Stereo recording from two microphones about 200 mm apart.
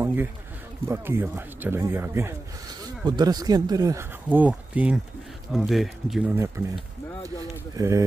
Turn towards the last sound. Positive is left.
turn(degrees=-15)  # may be behind; listen again after turning